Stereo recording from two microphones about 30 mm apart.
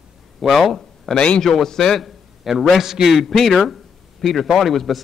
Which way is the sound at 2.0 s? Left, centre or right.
Centre.